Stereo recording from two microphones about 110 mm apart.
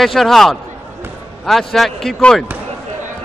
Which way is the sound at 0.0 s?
Centre (ahead or behind).